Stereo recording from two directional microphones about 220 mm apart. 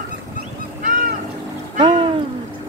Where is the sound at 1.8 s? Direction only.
20° right (ahead or behind).